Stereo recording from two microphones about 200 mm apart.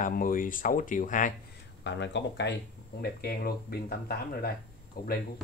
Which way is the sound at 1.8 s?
65° left (ahead or behind).